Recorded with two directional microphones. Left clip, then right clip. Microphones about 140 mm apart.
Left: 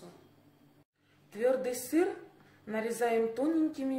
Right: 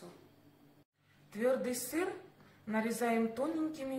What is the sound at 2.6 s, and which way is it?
Speech, 40° left (ahead or behind).